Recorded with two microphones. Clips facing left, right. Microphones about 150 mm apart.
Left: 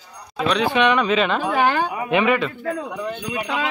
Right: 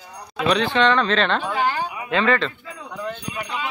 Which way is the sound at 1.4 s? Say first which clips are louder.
Left 4 dB; 55° left (ahead or behind).